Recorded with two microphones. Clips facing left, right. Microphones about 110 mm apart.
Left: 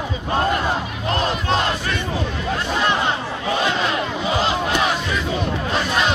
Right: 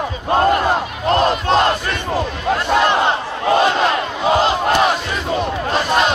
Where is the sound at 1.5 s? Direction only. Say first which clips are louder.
Right 5 dB; 55° right (ahead or behind).